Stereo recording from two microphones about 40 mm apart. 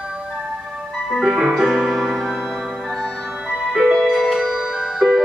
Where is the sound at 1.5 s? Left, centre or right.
Centre.